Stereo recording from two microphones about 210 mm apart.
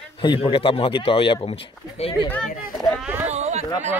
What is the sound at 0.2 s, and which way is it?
Speech, 20° left (ahead or behind).